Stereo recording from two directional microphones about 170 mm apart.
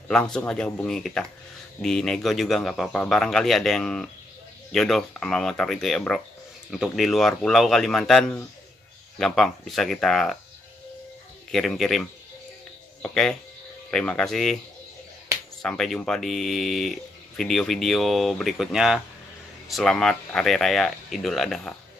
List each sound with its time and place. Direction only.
0.1 s speech: 5° left (ahead or behind)
11.5 s speech: centre (ahead or behind)
15.6 s speech: 5° left (ahead or behind)